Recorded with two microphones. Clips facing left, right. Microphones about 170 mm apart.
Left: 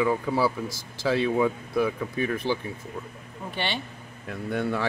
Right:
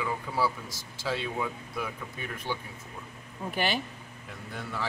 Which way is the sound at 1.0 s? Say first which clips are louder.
Left 9 dB; 85° left.